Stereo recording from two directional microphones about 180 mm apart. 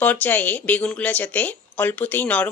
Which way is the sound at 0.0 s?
10° left (ahead or behind).